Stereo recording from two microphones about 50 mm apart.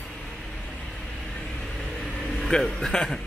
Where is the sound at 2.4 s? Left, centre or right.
Centre.